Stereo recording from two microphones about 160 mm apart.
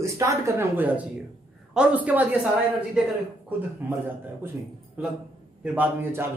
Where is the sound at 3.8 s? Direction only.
10° right (ahead or behind).